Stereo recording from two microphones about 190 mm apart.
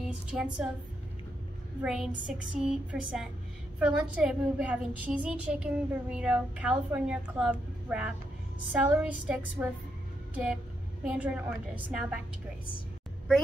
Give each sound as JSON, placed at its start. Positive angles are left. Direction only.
{"t": 0.0, "sound": "a woman's voice", "side_deg": -5}
{"t": 1.8, "sound": "a woman's voice", "side_deg": -5}